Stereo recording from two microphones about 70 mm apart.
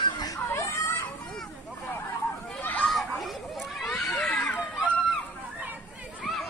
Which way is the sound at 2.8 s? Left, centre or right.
Centre.